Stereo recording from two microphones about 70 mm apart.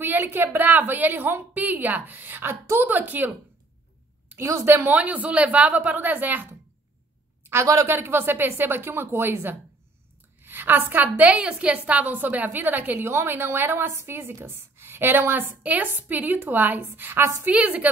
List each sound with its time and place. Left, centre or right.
0.0 s a woman's voice: right
4.4 s speech: right
4.9 s a woman's voice: right
7.6 s a woman's voice: right
17.5 s a woman's voice: centre